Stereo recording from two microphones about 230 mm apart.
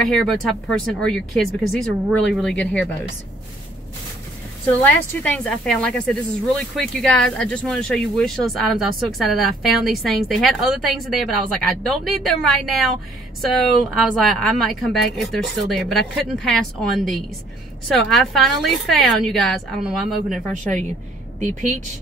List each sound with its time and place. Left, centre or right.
0.0 s a woman's voice: centre
4.6 s a woman's voice: centre
21.4 s speech: right